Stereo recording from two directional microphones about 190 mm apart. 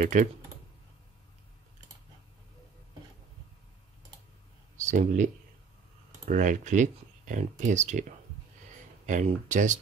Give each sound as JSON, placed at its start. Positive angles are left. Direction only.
{"t": 0.0, "sound": "speech", "side_deg": -40}
{"t": 4.7, "sound": "speech", "side_deg": -40}
{"t": 9.0, "sound": "speech", "side_deg": -40}